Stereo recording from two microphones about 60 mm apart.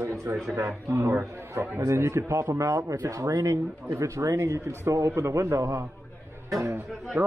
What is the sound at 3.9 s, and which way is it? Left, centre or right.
Speech, right.